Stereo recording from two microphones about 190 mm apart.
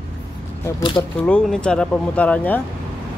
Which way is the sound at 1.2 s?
5° left (ahead or behind).